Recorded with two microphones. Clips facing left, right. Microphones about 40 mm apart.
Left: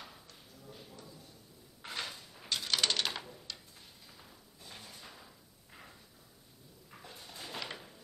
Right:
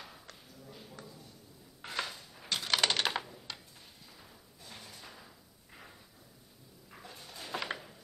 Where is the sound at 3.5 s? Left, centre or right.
Right.